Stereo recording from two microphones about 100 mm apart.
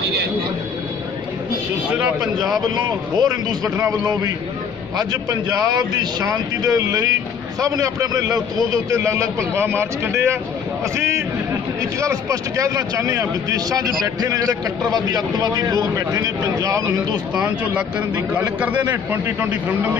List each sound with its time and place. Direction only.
1.9 s speech: 15° right (ahead or behind)
3.2 s a man's voice: 45° right (ahead or behind); by 10.3 s 25° right (ahead or behind)
12.0 s a man's voice: 35° right (ahead or behind)
17.4 s speech: 10° right (ahead or behind)